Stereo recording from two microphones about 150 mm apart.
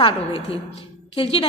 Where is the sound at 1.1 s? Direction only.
40° left (ahead or behind).